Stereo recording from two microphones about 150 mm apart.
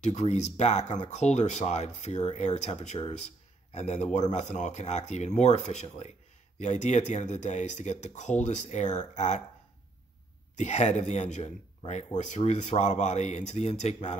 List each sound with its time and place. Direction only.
0.0 s speech: 50° left (ahead or behind)
10.5 s speech: 50° left (ahead or behind)